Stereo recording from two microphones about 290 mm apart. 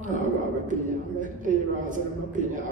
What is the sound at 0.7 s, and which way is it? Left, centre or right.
A man's voice, right.